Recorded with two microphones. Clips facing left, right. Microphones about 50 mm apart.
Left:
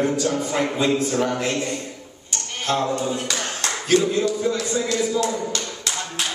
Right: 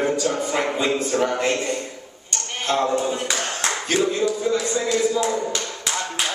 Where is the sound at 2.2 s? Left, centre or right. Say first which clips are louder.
Even; centre.